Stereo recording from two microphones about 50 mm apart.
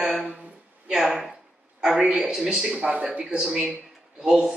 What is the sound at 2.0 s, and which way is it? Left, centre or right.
Speech, right.